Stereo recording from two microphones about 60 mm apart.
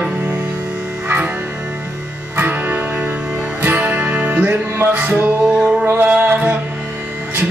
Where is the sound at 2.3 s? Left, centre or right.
Right.